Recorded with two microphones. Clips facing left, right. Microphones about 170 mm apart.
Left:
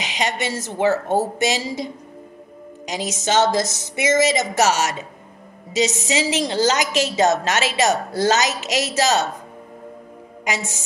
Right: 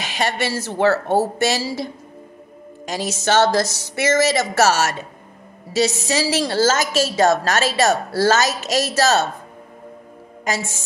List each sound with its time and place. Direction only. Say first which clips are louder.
0.0 s a woman's voice: right 2 dB; 15° left (ahead or behind)
2.9 s a woman's voice: right 2 dB; 20° left (ahead or behind)